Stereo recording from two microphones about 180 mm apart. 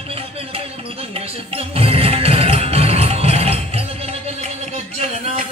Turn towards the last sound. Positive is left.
turn(degrees=-35)  # may be behind; listen again after turning